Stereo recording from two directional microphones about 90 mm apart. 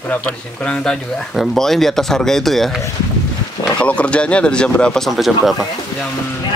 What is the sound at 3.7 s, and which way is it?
Speech, 15° left (ahead or behind).